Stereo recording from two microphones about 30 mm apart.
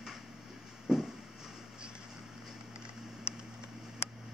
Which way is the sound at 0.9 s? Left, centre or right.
Centre.